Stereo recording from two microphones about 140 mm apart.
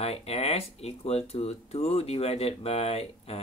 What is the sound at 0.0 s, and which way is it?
Speech, 45° left (ahead or behind).